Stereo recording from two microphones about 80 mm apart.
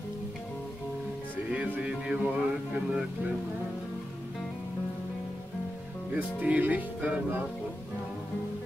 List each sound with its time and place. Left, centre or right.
1.5 s music: centre
6.1 s speech: centre